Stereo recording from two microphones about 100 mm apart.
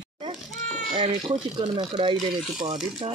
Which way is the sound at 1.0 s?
50° right (ahead or behind).